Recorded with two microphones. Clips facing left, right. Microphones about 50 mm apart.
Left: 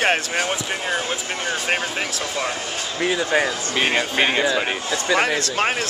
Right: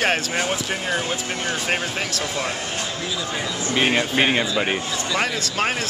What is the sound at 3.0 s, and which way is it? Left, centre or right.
Speech, left.